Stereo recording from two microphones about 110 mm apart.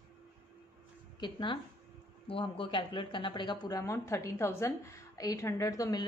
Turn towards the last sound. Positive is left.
turn(degrees=35)  # may be behind; listen again after turning